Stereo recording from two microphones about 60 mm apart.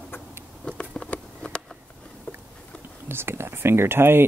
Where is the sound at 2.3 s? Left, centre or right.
Left.